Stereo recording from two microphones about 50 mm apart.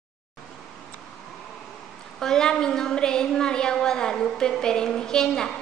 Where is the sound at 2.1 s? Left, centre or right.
Centre.